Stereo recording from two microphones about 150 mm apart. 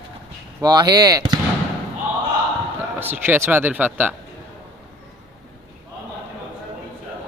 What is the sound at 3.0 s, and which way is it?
Speech, 15° right (ahead or behind).